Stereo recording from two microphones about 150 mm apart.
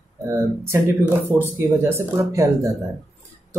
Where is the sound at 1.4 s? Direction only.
15° right (ahead or behind).